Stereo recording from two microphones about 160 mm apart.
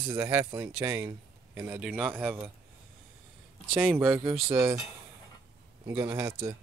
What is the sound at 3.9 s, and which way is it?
Speech, 15° right (ahead or behind).